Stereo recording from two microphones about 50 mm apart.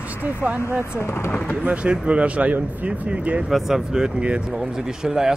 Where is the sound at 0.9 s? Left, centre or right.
Left.